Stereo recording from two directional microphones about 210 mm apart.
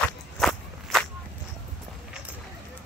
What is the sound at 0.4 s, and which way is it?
Walk, centre (ahead or behind).